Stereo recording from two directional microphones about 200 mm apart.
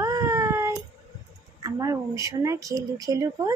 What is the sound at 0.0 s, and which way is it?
Baby cry, 15° right (ahead or behind).